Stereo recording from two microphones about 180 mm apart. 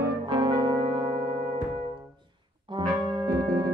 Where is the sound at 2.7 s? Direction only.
25° right (ahead or behind).